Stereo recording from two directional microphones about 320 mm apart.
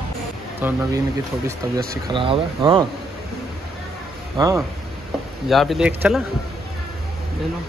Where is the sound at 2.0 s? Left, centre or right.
Centre.